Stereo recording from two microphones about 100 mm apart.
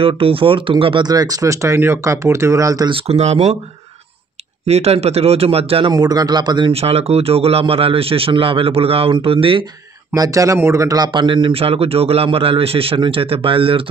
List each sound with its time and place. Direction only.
0.0 s a man's voice: 65° right (ahead or behind)
1.0 s speech: 40° right (ahead or behind)
2.9 s a man's voice: 80° right
4.6 s a man's voice: 90° right; by 5.9 s 75° right (ahead or behind)
5.9 s a man's voice: 40° right (ahead or behind)
6.7 s a man's voice: 90° right; by 9.7 s 65° right (ahead or behind)
10.1 s speech: 35° right (ahead or behind)
11.1 s a man's voice: 50° right (ahead or behind)